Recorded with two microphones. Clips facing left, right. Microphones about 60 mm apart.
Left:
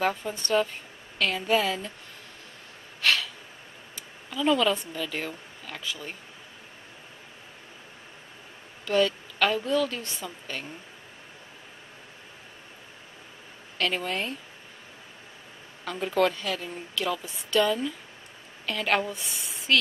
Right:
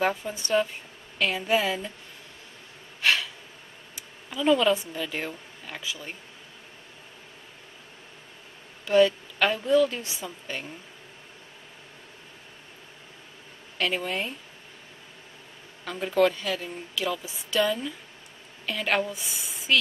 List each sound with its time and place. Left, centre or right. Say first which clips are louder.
0.0 s a woman's voice: right 1 dB; centre
3.0 s a sound: right 1 dB; centre
3.9 s speech: left 1 dB; centre
8.8 s a woman's voice: right 4 dB; centre
13.7 s a woman's voice: even; centre
15.8 s a woman's voice: right 2 dB; centre